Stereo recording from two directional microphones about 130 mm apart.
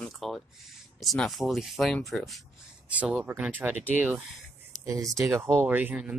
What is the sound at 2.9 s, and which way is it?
Speech, 10° right (ahead or behind).